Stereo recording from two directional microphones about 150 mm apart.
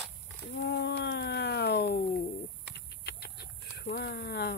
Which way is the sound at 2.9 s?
90° left.